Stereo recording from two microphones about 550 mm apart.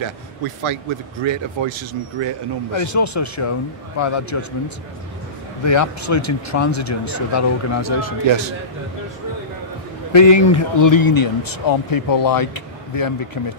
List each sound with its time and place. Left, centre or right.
0.7 s speech: right
2.7 s speech: left
8.3 s speech: right
10.1 s speech: left